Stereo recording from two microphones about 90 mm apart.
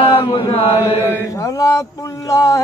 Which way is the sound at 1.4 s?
40° left (ahead or behind).